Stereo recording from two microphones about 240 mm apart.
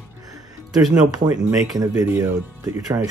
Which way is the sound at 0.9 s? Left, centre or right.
Centre.